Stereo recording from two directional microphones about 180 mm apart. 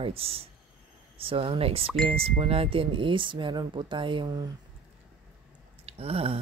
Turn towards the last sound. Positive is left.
turn(degrees=-35)  # may be behind; listen again after turning